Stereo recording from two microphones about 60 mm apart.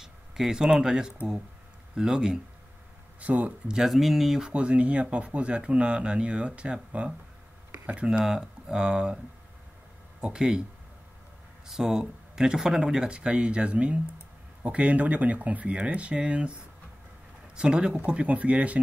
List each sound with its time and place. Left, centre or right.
0.0 s speech: centre
3.2 s speech: right
3.6 s speech: centre
4.5 s speech: centre
8.1 s speech: centre
10.2 s speech: centre
11.6 s speech: centre
17.6 s speech: centre